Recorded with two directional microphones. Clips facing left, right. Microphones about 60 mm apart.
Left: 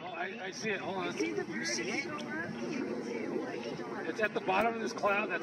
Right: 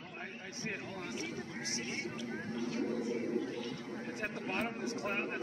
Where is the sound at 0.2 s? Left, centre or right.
Left.